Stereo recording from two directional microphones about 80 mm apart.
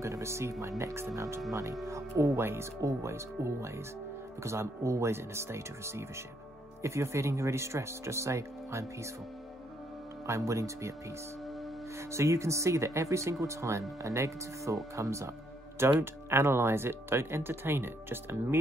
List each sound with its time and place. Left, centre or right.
0.0 s speech: right
10.2 s speech: right
12.1 s speech: right